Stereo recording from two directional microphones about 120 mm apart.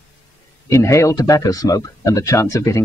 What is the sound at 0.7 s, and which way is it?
Speech, 25° left (ahead or behind).